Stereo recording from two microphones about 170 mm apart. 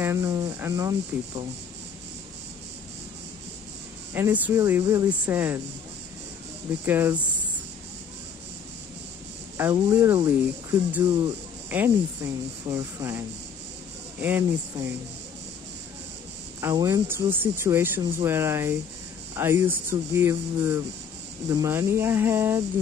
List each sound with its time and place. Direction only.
0.0 s speech: 15° right (ahead or behind)
4.1 s speech: 15° right (ahead or behind)
6.9 s speech: 10° right (ahead or behind)
9.6 s speech: 15° right (ahead or behind)
14.2 s speech: 10° right (ahead or behind)
16.6 s speech: 20° right (ahead or behind)